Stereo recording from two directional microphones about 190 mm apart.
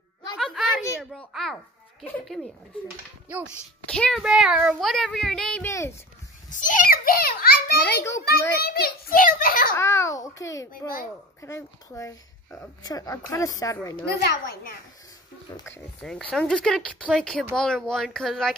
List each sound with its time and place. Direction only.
0.4 s a sound: centre (ahead or behind)
1.3 s a child's voice: centre (ahead or behind)
3.9 s a child's voice: 5° left (ahead or behind)
5.7 s speech: 15° left (ahead or behind)
6.5 s a child's voice: 45° left (ahead or behind)
9.8 s speech: 15° left (ahead or behind)
14.0 s a child's voice: 50° left (ahead or behind)
16.0 s a child's voice: 5° left (ahead or behind)